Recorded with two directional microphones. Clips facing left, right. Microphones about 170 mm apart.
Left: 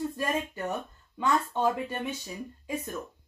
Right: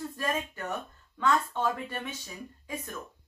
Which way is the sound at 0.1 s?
15° left (ahead or behind).